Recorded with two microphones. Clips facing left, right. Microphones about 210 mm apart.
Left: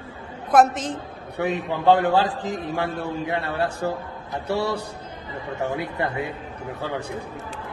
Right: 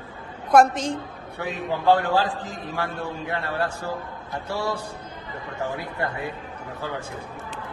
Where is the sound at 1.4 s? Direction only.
20° left (ahead or behind).